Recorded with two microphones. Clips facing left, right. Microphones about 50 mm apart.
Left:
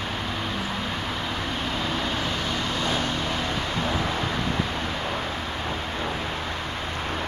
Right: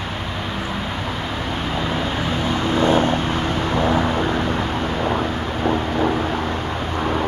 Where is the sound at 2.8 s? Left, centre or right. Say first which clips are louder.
Right 12 dB; right.